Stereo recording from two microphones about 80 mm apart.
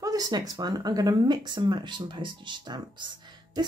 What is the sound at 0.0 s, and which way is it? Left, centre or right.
Speech, right.